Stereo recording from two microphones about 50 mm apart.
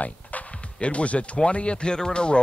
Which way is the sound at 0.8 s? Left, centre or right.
Left.